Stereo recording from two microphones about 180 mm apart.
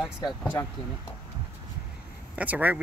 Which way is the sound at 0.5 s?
20° left (ahead or behind).